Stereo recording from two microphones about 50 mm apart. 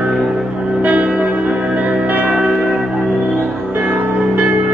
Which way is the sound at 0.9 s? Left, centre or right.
Right.